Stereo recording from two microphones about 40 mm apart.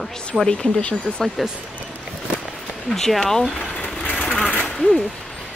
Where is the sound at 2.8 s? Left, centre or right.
Centre.